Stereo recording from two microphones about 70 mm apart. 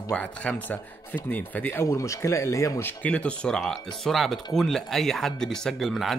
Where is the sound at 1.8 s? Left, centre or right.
Left.